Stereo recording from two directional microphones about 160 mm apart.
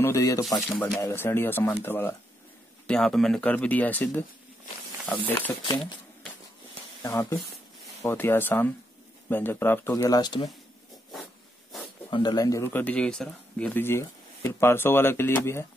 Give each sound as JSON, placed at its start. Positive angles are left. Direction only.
{"t": 0.0, "sound": "speech", "side_deg": 20}
{"t": 0.6, "sound": "speech", "side_deg": 0}
{"t": 1.0, "sound": "a man's voice", "side_deg": 15}
{"t": 2.9, "sound": "a man's voice", "side_deg": 5}
{"t": 5.7, "sound": "speech", "side_deg": 30}
{"t": 7.0, "sound": "a man's voice", "side_deg": 20}
{"t": 9.9, "sound": "speech", "side_deg": 25}
{"t": 12.1, "sound": "a man's voice", "side_deg": 30}